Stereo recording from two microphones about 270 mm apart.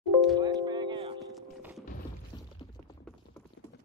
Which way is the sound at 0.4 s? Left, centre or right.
Centre.